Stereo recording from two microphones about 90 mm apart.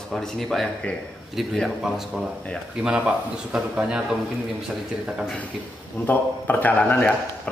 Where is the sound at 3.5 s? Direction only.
10° right (ahead or behind).